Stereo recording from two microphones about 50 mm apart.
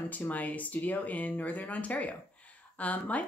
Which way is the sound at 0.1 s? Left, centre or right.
Left.